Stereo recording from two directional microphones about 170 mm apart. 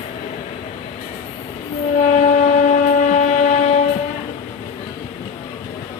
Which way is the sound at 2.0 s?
45° left (ahead or behind).